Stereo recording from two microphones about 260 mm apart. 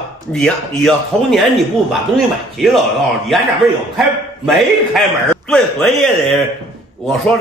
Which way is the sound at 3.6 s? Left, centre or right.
Centre.